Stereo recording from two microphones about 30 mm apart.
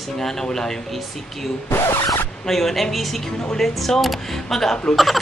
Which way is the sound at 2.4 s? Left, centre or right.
Centre.